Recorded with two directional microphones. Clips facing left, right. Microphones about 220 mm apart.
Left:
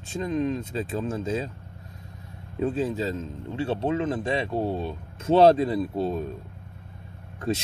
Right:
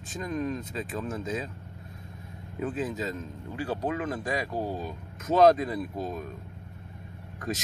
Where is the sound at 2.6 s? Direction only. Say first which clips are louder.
Left 5 dB; 30° left (ahead or behind).